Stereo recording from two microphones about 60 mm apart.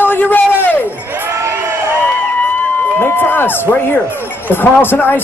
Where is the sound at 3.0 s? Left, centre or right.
Left.